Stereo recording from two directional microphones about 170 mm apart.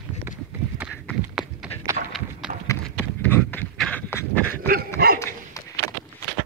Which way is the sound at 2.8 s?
10° left (ahead or behind).